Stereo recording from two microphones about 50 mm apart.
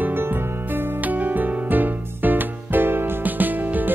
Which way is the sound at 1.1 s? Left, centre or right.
Right.